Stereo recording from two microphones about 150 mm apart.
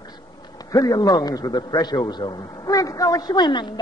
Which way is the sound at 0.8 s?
25° left (ahead or behind).